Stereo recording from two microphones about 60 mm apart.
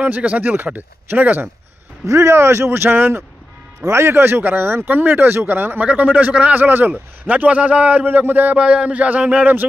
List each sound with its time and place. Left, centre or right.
0.0 s a man's voice: right
2.0 s a man's voice: right
8.5 s a man's voice: centre